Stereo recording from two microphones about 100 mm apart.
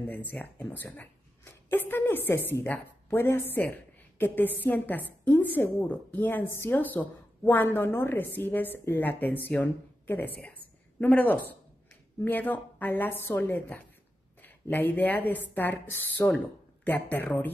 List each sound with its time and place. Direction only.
0.1 s speech: 15° left (ahead or behind)